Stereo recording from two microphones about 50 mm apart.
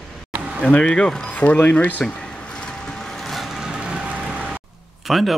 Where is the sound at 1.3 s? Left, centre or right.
Left.